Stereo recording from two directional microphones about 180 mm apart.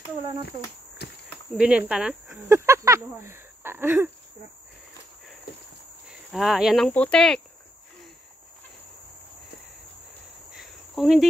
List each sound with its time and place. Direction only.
1.0 s cricket: 65° left (ahead or behind)
1.6 s speech: 5° right (ahead or behind)
2.6 s a sound: 15° right (ahead or behind)
6.0 s speech: centre (ahead or behind)
10.5 s cricket: centre (ahead or behind)